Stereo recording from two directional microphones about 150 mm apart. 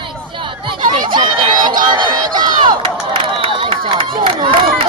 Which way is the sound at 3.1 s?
35° right (ahead or behind).